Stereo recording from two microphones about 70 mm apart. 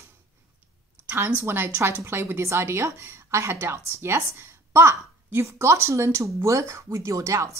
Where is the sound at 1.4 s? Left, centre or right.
Right.